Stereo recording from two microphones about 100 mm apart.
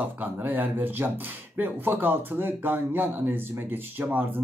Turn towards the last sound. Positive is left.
turn(degrees=-20)  # may be behind; listen again after turning